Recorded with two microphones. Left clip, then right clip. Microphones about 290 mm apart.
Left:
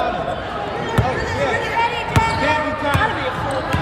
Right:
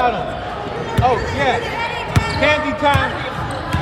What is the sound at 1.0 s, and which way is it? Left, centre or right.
Basketball bounce, centre.